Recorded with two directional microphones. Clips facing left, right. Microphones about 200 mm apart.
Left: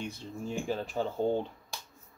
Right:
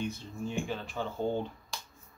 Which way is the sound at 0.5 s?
40° left (ahead or behind).